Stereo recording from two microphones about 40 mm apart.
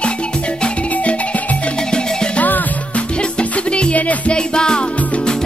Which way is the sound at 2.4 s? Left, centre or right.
Left.